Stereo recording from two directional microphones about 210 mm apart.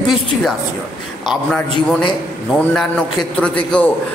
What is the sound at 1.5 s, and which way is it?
A man's voice, 5° left (ahead or behind).